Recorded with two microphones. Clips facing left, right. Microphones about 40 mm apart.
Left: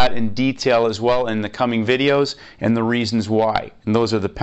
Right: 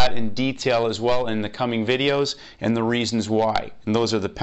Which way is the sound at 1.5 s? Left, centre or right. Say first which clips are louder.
Left 4 dB; left.